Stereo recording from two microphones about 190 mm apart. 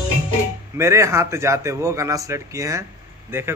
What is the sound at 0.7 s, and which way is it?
A man's voice, 15° right (ahead or behind).